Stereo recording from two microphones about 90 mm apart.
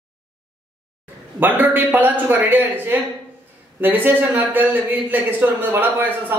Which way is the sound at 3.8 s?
20° right (ahead or behind).